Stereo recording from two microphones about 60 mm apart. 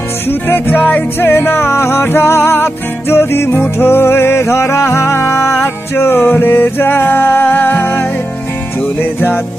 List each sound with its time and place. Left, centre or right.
0.3 s music: left
1.3 s music: left